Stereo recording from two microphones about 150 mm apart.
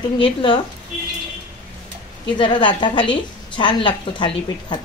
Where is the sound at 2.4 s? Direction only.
30° left (ahead or behind).